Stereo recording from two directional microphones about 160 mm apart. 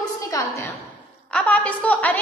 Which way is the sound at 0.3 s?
20° left (ahead or behind).